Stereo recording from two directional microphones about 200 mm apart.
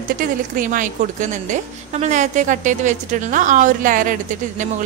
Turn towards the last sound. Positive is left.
turn(degrees=-40)  # may be behind; listen again after turning